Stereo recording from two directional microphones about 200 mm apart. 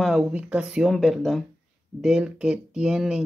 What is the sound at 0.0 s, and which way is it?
Speech, 5° right (ahead or behind).